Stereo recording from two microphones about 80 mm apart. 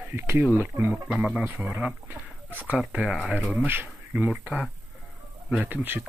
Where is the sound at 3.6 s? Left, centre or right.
Right.